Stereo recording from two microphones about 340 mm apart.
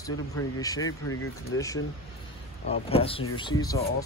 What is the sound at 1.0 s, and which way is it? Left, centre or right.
Speech, left.